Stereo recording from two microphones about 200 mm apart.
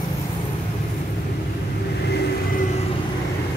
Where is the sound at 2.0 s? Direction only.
55° left (ahead or behind).